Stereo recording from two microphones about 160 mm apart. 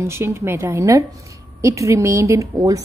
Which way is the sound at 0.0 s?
15° right (ahead or behind).